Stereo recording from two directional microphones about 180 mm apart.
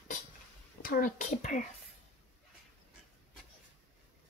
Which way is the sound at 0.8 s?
50° left (ahead or behind).